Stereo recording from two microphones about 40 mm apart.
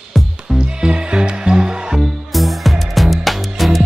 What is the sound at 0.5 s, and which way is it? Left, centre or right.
Music, right.